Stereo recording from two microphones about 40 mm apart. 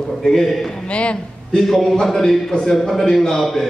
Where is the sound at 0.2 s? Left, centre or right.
Centre.